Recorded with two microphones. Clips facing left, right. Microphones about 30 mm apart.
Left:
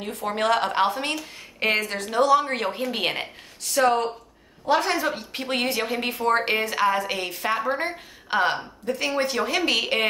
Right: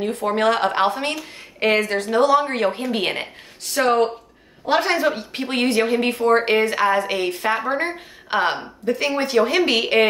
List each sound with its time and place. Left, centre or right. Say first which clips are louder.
0.0 s a woman's voice: right 6 dB; centre
1.6 s speech: right 5 dB; centre
2.0 s a woman's voice: even; right
2.5 s speech: right 5 dB; centre
3.8 s speech: right 3 dB; right
4.8 s a woman's voice: right 5 dB; right
5.1 s a woman's voice: right 3 dB; centre